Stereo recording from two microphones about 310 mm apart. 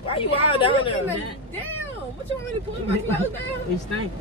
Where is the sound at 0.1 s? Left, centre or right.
Centre.